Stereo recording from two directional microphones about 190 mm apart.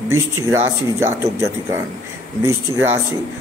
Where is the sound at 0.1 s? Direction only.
15° right (ahead or behind).